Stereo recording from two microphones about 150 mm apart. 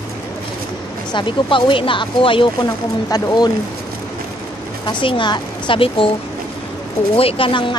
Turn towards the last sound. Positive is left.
turn(degrees=35)  # may be behind; listen again after turning